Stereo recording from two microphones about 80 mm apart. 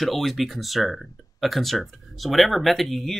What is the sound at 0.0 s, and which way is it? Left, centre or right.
Speech, centre.